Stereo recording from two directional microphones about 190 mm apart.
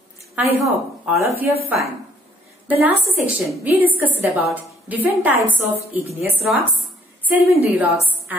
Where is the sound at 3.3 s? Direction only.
10° right (ahead or behind).